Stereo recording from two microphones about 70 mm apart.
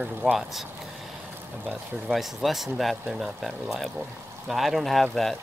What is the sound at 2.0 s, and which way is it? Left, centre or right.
Speech, centre.